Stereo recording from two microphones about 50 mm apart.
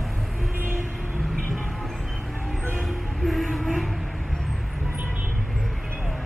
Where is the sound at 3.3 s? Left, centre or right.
Centre.